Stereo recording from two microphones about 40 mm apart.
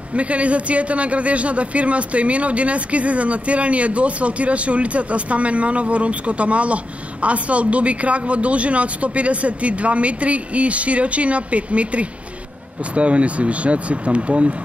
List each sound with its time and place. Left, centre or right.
0.1 s a man's voice: right